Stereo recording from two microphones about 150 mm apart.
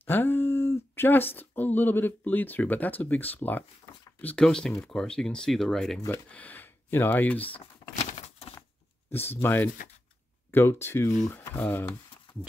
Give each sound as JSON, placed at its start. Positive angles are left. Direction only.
{"t": 0.0, "sound": "speech", "side_deg": 15}
{"t": 6.0, "sound": "speech", "side_deg": 10}
{"t": 8.1, "sound": "a sound", "side_deg": 45}
{"t": 9.1, "sound": "speech", "side_deg": 15}